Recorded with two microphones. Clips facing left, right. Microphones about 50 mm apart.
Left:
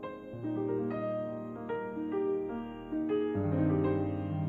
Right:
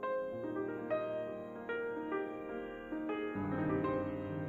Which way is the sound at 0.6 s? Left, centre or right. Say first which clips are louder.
Left 5 dB; right.